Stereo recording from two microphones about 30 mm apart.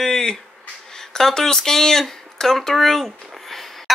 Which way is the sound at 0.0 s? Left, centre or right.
Left.